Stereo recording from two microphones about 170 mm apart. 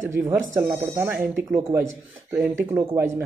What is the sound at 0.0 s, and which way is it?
Speech, 15° right (ahead or behind).